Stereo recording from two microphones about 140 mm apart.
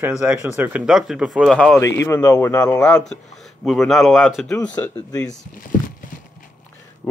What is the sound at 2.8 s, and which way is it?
Speech, 5° left (ahead or behind).